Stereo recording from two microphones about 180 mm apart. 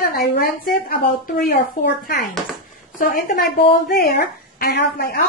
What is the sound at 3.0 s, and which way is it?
A woman's voice, 55° left (ahead or behind).